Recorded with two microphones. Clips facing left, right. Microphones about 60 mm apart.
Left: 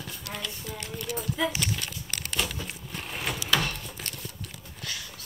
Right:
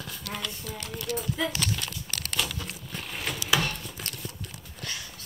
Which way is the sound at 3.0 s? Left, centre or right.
Centre.